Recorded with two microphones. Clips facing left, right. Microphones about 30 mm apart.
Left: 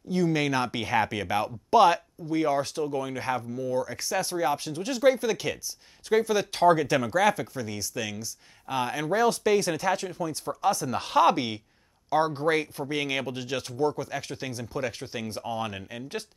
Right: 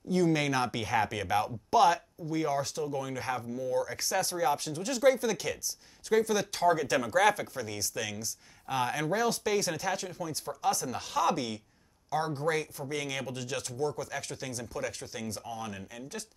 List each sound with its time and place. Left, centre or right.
0.1 s speech: centre
6.9 s speech: centre
11.0 s speech: left